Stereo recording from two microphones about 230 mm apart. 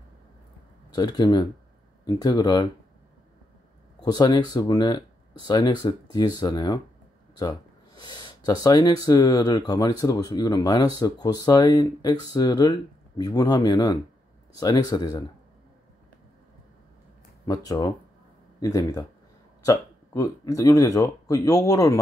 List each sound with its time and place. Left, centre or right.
0.9 s speech: centre
4.0 s speech: centre
17.5 s speech: centre